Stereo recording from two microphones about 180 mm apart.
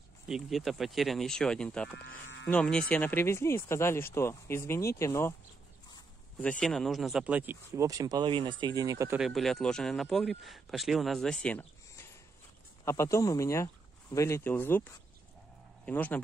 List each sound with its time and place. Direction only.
0.3 s speech: centre (ahead or behind)
2.0 s speech: 70° left (ahead or behind)
2.5 s speech: 5° left (ahead or behind)
6.6 s speech: centre (ahead or behind); by 9.2 s 15° right (ahead or behind)
9.2 s speech: centre (ahead or behind)